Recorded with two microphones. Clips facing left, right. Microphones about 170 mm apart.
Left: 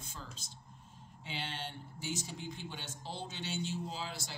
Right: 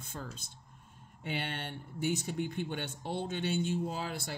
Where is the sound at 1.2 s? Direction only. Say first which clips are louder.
Right 5 dB; 60° right (ahead or behind).